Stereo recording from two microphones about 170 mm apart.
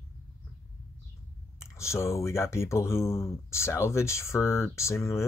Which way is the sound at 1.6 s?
15° left (ahead or behind).